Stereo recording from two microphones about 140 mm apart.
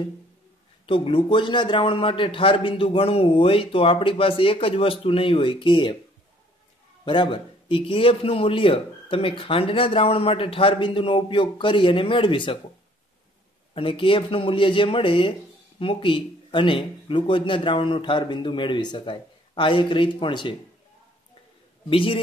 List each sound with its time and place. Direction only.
0.8 s a man's voice: 40° left (ahead or behind)
7.1 s a man's voice: 35° left (ahead or behind)
13.7 s a man's voice: 40° left (ahead or behind)
21.8 s a man's voice: 40° left (ahead or behind)